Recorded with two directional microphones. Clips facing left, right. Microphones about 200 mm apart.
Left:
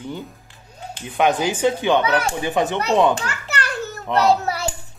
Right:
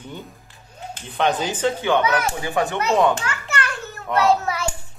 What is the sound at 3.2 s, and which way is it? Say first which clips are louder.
Children playing: even; 35° left (ahead or behind).